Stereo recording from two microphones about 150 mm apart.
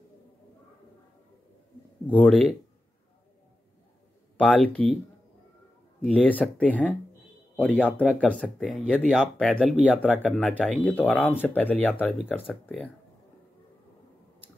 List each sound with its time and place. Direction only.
2.0 s speech: 10° left (ahead or behind)
4.4 s speech: 5° left (ahead or behind)
6.0 s speech: 10° left (ahead or behind)